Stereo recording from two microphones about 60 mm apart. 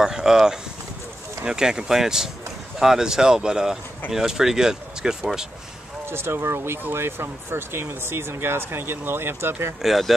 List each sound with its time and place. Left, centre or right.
0.0 s speech: centre
6.0 s speech: right
9.8 s speech: centre